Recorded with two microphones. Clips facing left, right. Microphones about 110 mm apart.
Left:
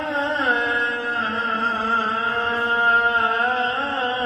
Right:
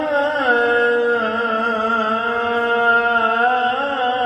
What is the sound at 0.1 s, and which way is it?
Music, 55° right (ahead or behind).